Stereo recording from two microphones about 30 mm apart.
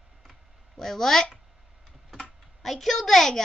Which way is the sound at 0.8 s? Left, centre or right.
Centre.